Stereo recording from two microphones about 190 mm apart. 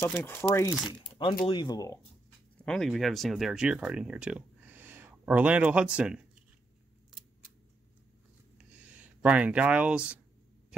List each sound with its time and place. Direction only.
0.0 s speech: 10° left (ahead or behind)
0.7 s speech: 5° right (ahead or behind)
1.4 s speech: 25° left (ahead or behind)
2.6 s speech: 5° left (ahead or behind)
8.5 s a sound: 5° right (ahead or behind)